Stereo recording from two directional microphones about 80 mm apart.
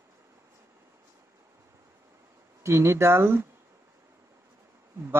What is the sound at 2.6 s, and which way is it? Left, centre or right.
Speech, right.